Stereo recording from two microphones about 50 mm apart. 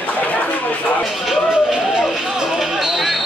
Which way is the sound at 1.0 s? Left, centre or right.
Centre.